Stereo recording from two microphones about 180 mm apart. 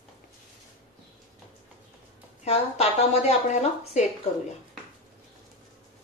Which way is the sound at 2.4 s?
35° left (ahead or behind).